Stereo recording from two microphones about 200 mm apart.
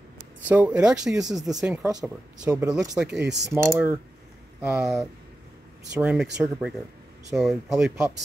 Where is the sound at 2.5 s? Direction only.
15° right (ahead or behind).